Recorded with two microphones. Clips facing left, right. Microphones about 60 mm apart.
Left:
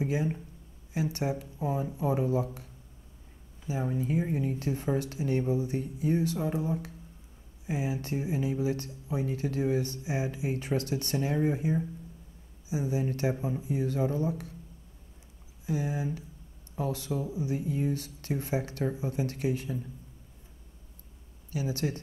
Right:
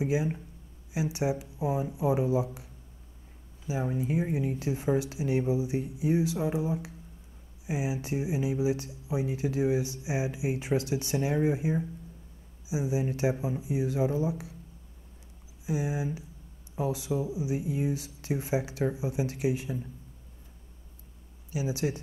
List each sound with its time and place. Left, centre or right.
0.0 s speech: centre
15.6 s speech: centre
21.5 s speech: centre